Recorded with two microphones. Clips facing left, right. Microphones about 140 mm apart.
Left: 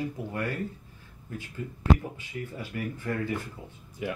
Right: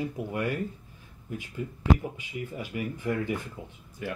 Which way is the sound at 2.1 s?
15° right (ahead or behind).